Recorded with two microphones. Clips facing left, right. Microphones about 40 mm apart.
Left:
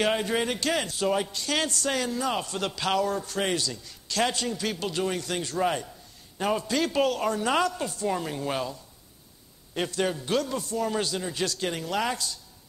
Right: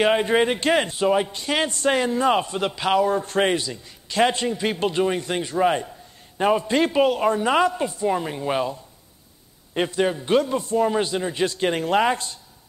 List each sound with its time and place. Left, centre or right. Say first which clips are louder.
0.0 s a man's voice: right 7 dB; right
9.8 s a man's voice: right 6 dB; right